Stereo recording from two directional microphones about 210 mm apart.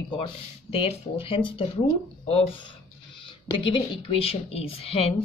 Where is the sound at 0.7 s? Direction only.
25° left (ahead or behind).